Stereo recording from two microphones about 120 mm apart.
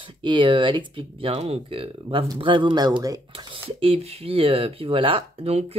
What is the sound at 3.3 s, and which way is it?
Speech, 50° right (ahead or behind).